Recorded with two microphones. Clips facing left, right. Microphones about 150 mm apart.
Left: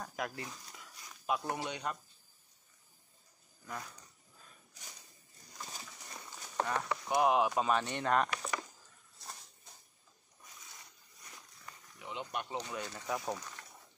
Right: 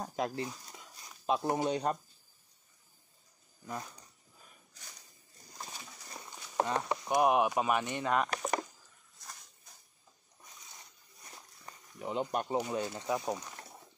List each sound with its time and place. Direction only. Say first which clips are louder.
0.0 s speech: right 6 dB; 25° right (ahead or behind)
3.6 s speech: right 3 dB; 20° right (ahead or behind)
6.1 s speech: right 4 dB; 20° right (ahead or behind)
8.3 s a sound: right 5 dB; 40° right (ahead or behind)
9.2 s dog: left 1 dB; 30° left (ahead or behind)
11.2 s snake: right 2 dB; 35° right (ahead or behind)
12.6 s speech: right 6 dB; 25° right (ahead or behind)